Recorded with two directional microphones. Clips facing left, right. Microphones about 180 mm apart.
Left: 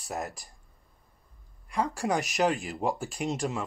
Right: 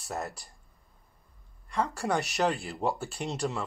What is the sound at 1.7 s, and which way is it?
A woman's voice, 10° left (ahead or behind).